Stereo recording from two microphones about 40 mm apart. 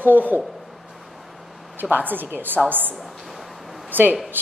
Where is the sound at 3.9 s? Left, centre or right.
Right.